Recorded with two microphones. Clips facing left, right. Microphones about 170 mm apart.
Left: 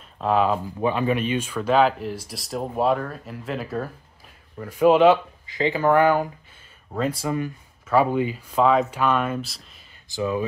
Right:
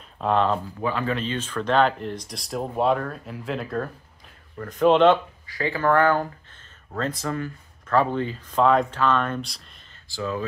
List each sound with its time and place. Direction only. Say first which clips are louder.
0.2 s speech: left 1 dB; 5° left (ahead or behind)
0.7 s speech: left 4 dB; 20° left (ahead or behind)
5.5 s speech: left 2 dB; 20° left (ahead or behind)
10.0 s speech: left 4 dB; 15° left (ahead or behind)